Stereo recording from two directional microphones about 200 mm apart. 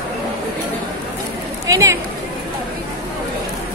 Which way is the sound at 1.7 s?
15° right (ahead or behind).